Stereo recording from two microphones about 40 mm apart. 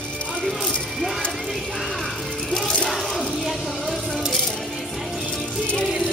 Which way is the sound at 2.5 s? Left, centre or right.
Left.